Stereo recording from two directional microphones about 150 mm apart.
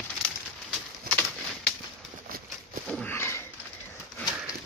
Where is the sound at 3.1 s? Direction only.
15° left (ahead or behind).